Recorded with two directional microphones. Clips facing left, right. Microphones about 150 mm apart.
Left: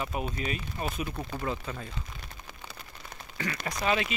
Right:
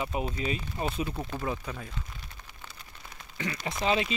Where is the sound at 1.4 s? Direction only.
5° right (ahead or behind).